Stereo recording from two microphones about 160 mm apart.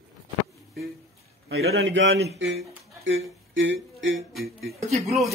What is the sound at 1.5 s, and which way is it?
A man's voice, 90° right.